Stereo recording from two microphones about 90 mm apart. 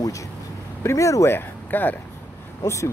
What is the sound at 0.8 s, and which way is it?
Speech, 35° left (ahead or behind).